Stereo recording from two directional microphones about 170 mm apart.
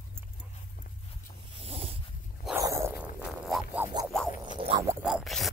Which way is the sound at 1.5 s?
35° right (ahead or behind).